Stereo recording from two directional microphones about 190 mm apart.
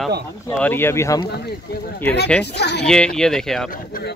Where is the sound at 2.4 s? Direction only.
60° left (ahead or behind).